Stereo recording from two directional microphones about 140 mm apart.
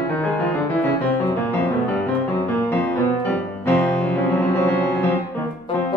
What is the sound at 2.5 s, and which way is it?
Music, 15° left (ahead or behind).